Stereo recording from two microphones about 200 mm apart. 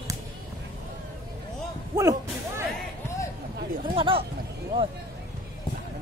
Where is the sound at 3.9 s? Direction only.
25° right (ahead or behind).